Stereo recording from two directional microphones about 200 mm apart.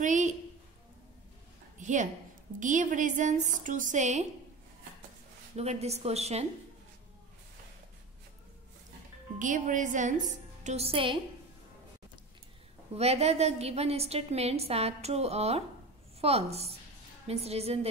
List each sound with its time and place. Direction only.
0.0 s a sound: 40° right (ahead or behind)
1.8 s a sound: 40° right (ahead or behind)
2.6 s a woman's voice: 40° right (ahead or behind)
5.6 s a woman's voice: 30° right (ahead or behind)
9.4 s a woman's voice: 40° right (ahead or behind)
12.9 s a woman's voice: 30° right (ahead or behind)